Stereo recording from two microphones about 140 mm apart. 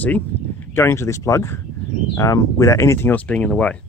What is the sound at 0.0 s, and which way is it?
Speech, 10° left (ahead or behind).